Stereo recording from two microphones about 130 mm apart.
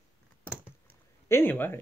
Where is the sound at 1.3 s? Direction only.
15° left (ahead or behind).